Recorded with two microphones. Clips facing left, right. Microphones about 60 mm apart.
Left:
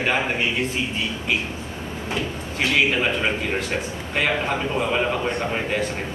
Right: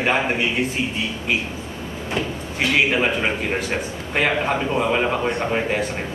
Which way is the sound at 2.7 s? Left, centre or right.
Centre.